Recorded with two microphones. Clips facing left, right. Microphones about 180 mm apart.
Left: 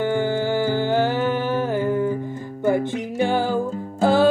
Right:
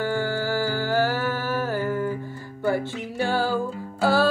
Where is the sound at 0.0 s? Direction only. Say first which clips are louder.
Left 4 dB; 20° left (ahead or behind).